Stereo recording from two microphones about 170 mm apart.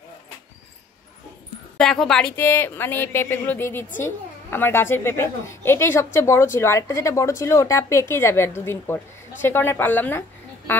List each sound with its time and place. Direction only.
1.8 s speech: 5° left (ahead or behind)
2.3 s a woman's voice: 15° left (ahead or behind)